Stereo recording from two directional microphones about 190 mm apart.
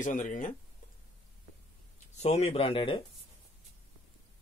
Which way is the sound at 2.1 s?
35° left (ahead or behind).